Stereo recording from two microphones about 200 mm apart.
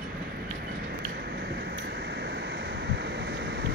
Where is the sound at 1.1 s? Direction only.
55° right (ahead or behind).